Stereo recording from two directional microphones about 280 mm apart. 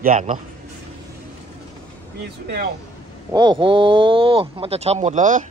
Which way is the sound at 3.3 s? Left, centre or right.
Centre.